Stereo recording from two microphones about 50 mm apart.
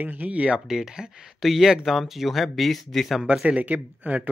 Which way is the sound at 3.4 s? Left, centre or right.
Right.